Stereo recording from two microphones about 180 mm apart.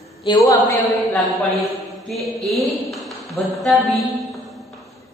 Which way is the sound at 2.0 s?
Centre (ahead or behind).